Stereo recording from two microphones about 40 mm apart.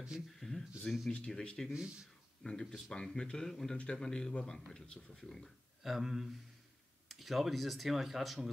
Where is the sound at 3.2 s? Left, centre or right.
Centre.